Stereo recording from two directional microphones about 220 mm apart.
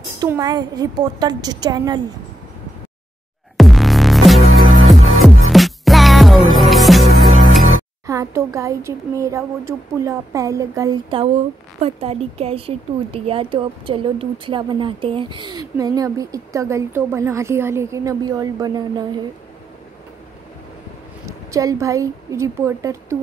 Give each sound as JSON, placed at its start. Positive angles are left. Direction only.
{"t": 0.2, "sound": "a woman's voice", "side_deg": -15}
{"t": 3.5, "sound": "music", "side_deg": 0}
{"t": 8.1, "sound": "a woman's voice", "side_deg": -15}
{"t": 21.3, "sound": "a woman's voice", "side_deg": -15}